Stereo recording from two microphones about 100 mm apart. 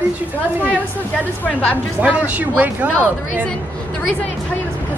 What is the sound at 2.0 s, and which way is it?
Speech, 15° right (ahead or behind).